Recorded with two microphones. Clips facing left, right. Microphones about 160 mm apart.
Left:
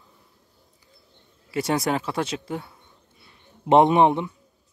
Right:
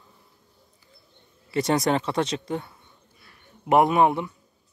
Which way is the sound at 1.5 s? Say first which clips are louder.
Right 2 dB; 5° left (ahead or behind).